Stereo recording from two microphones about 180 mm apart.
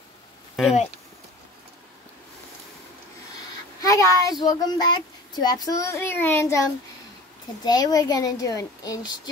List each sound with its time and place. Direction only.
3.8 s a child's voice: 20° left (ahead or behind)